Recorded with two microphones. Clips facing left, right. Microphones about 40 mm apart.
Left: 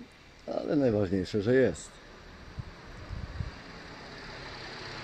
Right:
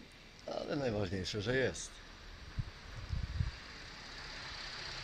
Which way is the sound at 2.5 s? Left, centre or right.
Centre.